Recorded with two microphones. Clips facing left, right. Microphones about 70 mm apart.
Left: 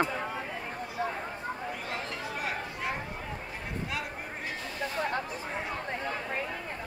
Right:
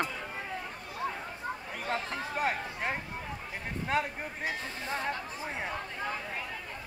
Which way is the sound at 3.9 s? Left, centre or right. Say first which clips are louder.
Right 8 dB; right.